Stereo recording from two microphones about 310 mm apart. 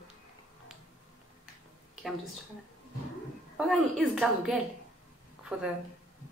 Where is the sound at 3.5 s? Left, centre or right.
Centre.